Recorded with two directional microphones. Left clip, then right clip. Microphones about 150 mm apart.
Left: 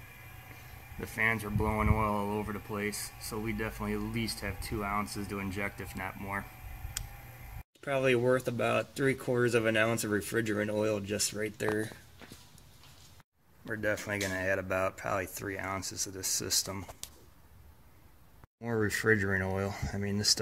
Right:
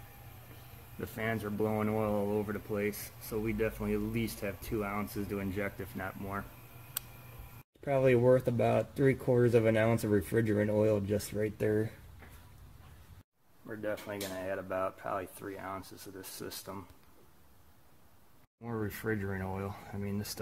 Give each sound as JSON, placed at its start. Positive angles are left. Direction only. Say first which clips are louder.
{"t": 1.0, "sound": "speech", "louder": "left 5 dB", "side_deg": 15}
{"t": 7.8, "sound": "speech", "louder": "right 1 dB", "side_deg": -10}
{"t": 13.7, "sound": "speech", "louder": "left 5 dB", "side_deg": 15}
{"t": 18.6, "sound": "speech", "louder": "left 7 dB", "side_deg": 35}